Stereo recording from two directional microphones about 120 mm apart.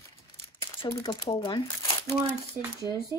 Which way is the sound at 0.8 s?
35° left (ahead or behind).